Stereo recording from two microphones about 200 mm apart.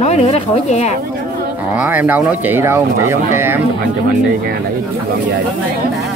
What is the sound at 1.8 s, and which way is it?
Speech, 10° right (ahead or behind).